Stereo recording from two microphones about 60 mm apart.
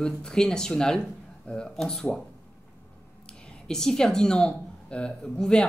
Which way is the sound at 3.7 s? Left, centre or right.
Centre.